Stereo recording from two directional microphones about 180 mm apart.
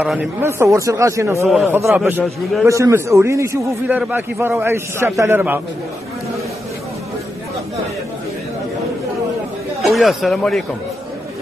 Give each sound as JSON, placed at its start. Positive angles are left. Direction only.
{"t": 0.0, "sound": "a man's voice", "side_deg": -5}
{"t": 1.5, "sound": "a man's voice", "side_deg": 0}
{"t": 9.8, "sound": "speech", "side_deg": 0}